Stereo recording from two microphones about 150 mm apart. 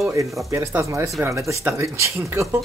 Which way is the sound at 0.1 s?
20° right (ahead or behind).